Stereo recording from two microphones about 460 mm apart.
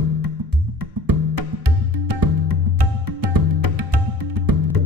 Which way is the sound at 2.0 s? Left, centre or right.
Right.